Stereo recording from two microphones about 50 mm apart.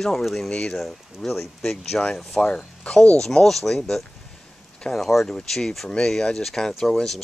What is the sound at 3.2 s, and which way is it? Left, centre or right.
Speech, centre.